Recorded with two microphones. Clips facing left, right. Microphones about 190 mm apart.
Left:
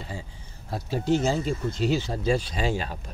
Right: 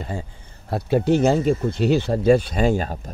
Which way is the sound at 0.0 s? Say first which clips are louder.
Right 7 dB; 55° right (ahead or behind).